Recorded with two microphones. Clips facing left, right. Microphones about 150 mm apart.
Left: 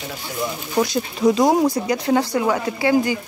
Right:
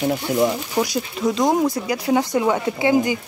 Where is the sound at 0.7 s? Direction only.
10° right (ahead or behind).